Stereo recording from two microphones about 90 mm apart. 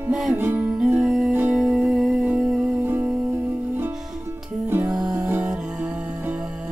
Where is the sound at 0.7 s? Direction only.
10° right (ahead or behind).